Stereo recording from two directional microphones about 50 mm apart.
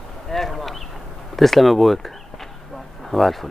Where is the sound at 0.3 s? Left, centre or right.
Centre.